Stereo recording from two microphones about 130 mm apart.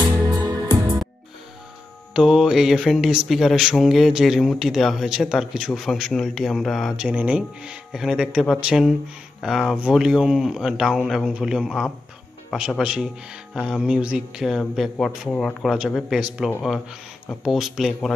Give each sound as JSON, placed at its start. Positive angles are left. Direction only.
{"t": 0.0, "sound": "music", "side_deg": -30}
{"t": 2.1, "sound": "mantra", "side_deg": -5}